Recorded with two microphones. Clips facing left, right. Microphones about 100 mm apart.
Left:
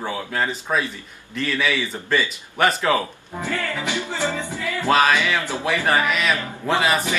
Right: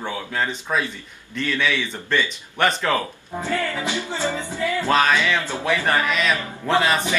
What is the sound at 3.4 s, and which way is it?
Speech, 20° right (ahead or behind).